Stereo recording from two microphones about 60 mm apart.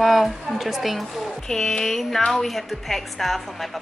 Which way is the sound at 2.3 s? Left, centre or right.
Centre.